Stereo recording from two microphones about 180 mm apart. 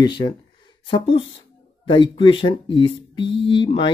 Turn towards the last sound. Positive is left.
turn(degrees=25)  # may be behind; listen again after turning